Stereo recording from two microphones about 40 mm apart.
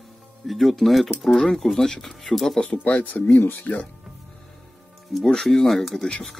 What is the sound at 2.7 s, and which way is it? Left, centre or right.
Speech, left.